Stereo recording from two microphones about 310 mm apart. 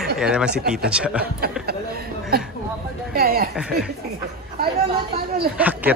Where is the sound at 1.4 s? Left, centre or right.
Right.